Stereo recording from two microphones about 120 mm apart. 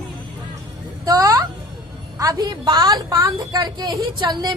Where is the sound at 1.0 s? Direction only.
30° right (ahead or behind).